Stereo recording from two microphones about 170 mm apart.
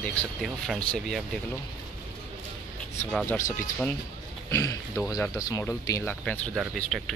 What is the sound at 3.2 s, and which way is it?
Speech, 15° left (ahead or behind).